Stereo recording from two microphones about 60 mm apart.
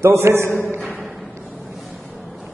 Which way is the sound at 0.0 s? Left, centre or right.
Right.